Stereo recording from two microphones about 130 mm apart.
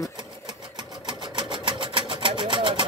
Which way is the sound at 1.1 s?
40° right (ahead or behind).